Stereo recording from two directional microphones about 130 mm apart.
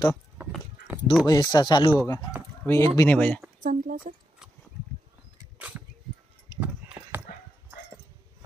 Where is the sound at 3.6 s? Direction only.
90° right.